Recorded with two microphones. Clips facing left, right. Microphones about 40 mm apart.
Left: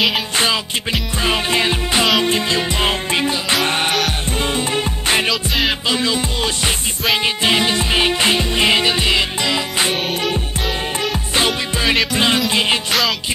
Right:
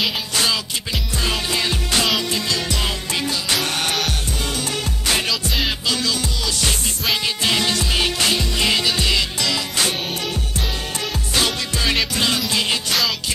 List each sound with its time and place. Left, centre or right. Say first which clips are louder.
1.2 s music: left 5 dB; left
11.3 s music: left 3 dB; left